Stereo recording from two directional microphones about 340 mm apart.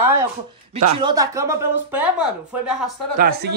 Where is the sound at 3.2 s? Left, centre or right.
Right.